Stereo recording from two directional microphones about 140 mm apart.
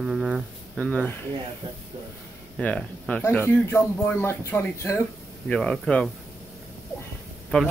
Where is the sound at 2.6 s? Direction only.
10° left (ahead or behind).